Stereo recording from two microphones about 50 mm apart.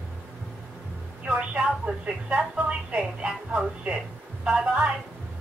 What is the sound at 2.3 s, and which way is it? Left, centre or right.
A woman's voice, right.